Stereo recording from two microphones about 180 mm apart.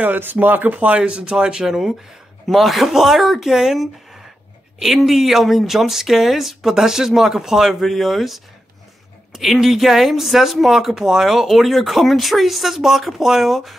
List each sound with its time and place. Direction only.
0.0 s speech: 10° right (ahead or behind)